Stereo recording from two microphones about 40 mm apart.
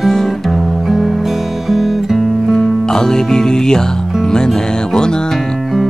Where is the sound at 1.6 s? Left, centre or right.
Centre.